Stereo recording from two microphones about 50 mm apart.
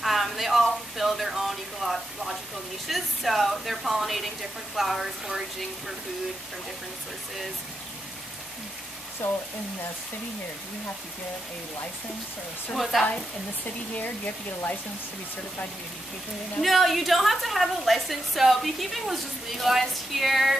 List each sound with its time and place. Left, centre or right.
0.0 s a sound: centre
2.9 s a woman's voice: centre
9.2 s speech: left
12.7 s a woman's voice: centre
13.9 s speech: left
16.6 s a woman's voice: centre